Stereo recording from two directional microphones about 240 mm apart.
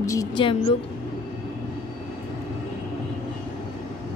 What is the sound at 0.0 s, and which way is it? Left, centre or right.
Speech, centre.